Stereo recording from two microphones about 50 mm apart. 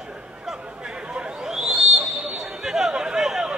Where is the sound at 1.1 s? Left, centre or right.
Centre.